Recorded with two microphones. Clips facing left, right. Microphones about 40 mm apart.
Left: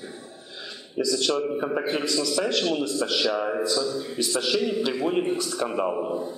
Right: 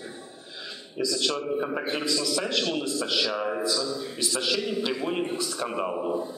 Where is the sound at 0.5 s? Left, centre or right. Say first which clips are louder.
Left 5 dB; centre.